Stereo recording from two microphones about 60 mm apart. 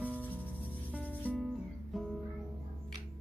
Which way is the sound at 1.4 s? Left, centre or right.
Centre.